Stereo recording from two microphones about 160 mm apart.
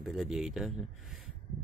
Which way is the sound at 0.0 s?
Centre (ahead or behind).